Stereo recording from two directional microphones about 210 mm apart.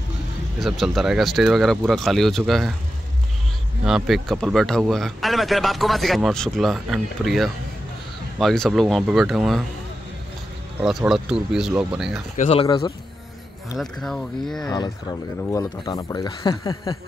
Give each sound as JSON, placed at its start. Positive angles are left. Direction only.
{"t": 0.6, "sound": "speech", "side_deg": 0}
{"t": 3.8, "sound": "speech", "side_deg": 0}
{"t": 10.8, "sound": "speech", "side_deg": 0}
{"t": 12.4, "sound": "speech", "side_deg": 30}
{"t": 12.6, "sound": "speech", "side_deg": 20}
{"t": 13.7, "sound": "speech", "side_deg": 0}
{"t": 14.7, "sound": "speech", "side_deg": 20}